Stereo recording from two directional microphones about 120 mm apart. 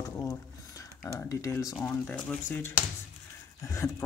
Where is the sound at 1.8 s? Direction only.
15° left (ahead or behind).